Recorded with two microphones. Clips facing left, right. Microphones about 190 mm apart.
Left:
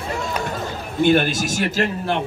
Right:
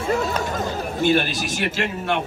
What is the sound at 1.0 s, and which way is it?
A man's voice, 50° left (ahead or behind).